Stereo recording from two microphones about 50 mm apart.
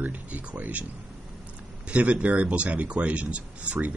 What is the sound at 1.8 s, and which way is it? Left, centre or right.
Speech, right.